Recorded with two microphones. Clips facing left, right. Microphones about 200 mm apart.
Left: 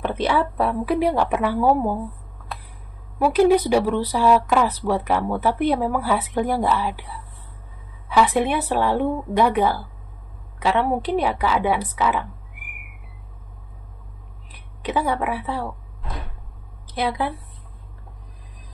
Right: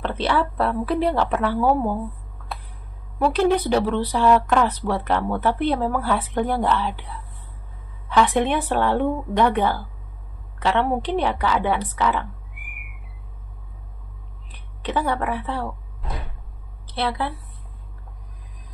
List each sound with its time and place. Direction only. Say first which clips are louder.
0.0 s speech: left 1 dB; 10° left (ahead or behind)
3.2 s speech: left 3 dB; 10° left (ahead or behind)
8.1 s speech: even; 10° left (ahead or behind)
14.8 s speech: left 1 dB; 10° left (ahead or behind)
16.8 s a woman's voice: left 1 dB; 10° left (ahead or behind)